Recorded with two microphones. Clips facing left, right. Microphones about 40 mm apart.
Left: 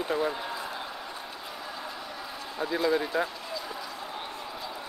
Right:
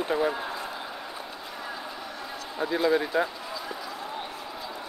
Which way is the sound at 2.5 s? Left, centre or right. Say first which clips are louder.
Right 2 dB; centre.